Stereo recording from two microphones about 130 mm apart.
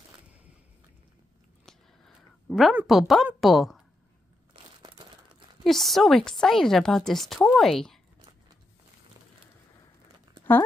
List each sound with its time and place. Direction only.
1.7 s a sound: centre (ahead or behind)
2.9 s a woman's voice: centre (ahead or behind)
4.9 s crumpling: 35° right (ahead or behind)
5.6 s a woman's voice: centre (ahead or behind)